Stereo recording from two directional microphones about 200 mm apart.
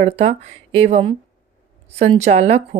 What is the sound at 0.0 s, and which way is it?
A woman's voice, 30° right (ahead or behind).